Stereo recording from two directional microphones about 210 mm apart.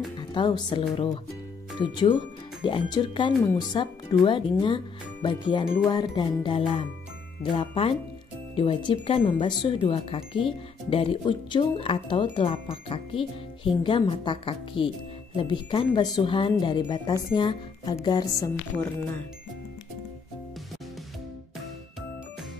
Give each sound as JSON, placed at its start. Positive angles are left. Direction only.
{"t": 0.2, "sound": "speech", "side_deg": 20}